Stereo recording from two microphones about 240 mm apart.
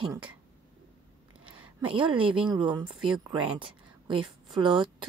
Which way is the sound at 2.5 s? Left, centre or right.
Centre.